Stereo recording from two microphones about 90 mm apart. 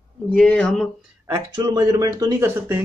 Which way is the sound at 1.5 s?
55° right (ahead or behind).